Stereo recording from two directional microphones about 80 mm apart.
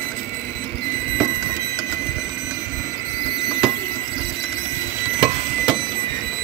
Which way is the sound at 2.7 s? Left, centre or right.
Right.